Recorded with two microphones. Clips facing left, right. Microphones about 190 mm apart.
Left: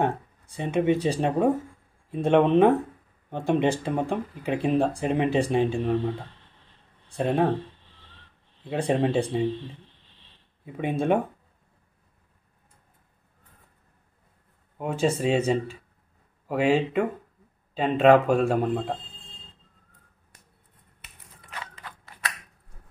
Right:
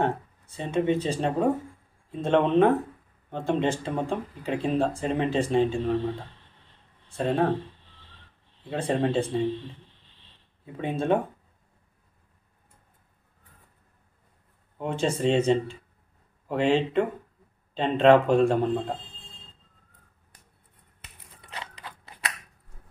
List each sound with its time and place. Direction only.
0.0 s speech: 15° left (ahead or behind)
7.1 s speech: 15° left (ahead or behind)
8.6 s speech: 15° left (ahead or behind)
10.6 s speech: 15° left (ahead or behind)
14.8 s a man's voice: 5° left (ahead or behind)
21.5 s a sound: 20° right (ahead or behind)